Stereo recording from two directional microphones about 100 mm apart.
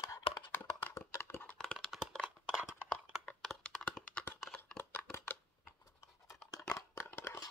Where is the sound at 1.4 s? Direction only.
10° left (ahead or behind).